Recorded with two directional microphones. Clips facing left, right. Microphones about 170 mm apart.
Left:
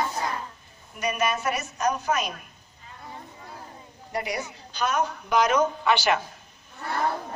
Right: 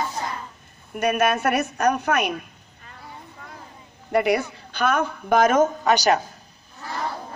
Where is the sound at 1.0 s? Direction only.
55° right (ahead or behind).